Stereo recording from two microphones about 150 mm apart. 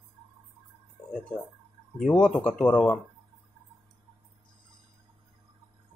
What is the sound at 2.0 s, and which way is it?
Speech, 5° left (ahead or behind).